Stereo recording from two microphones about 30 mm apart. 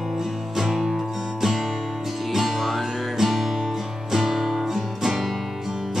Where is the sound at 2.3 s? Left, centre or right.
Centre.